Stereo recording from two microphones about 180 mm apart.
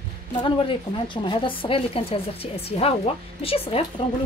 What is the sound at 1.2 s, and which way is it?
A woman's voice, 25° left (ahead or behind).